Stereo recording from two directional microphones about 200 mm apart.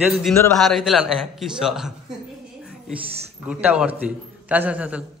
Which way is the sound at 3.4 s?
5° right (ahead or behind).